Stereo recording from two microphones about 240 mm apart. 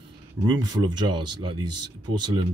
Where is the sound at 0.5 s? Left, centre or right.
Centre.